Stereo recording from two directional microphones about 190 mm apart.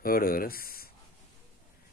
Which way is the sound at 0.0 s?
50° left (ahead or behind).